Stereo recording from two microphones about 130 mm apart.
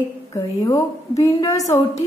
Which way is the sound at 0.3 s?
25° left (ahead or behind).